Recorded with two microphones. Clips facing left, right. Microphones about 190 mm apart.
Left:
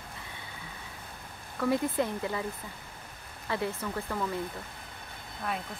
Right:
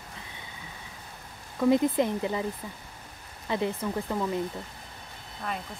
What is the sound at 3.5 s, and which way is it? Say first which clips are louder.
Speech: right 4 dB; 20° right (ahead or behind).